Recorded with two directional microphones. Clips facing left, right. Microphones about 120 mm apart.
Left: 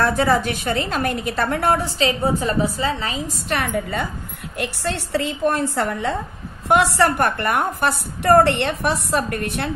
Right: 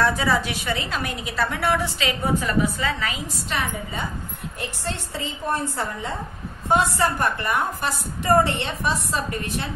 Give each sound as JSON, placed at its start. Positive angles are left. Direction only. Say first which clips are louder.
{"t": 0.0, "sound": "a woman's voice", "louder": "left 3 dB", "side_deg": 55}
{"t": 3.4, "sound": "a woman's voice", "louder": "left 5 dB", "side_deg": 65}
{"t": 4.6, "sound": "a woman's voice", "louder": "left 6 dB", "side_deg": 75}